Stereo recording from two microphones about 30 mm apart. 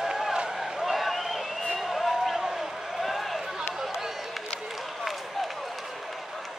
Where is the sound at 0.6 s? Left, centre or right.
Centre.